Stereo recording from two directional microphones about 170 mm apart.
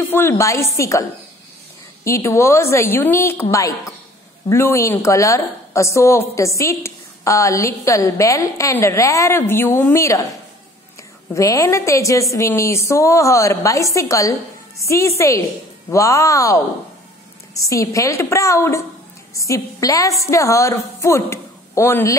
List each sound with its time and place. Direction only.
0.1 s a woman's voice: 15° left (ahead or behind)
2.0 s a woman's voice: 15° left (ahead or behind)
4.5 s a woman's voice: 15° left (ahead or behind)
11.3 s a woman's voice: 20° left (ahead or behind)